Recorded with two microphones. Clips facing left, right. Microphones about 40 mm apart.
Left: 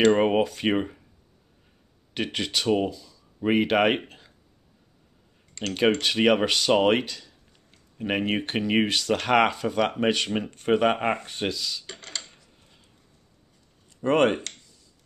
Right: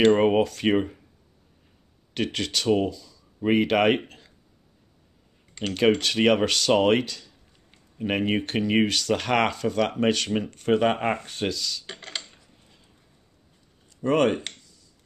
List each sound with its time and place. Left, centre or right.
0.1 s speech: centre
2.1 s speech: centre
3.3 s speech: centre
5.9 s speech: centre
11.8 s cutlery: right
14.0 s speech: left